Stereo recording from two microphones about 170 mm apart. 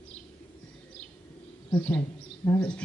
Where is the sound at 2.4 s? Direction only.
10° left (ahead or behind).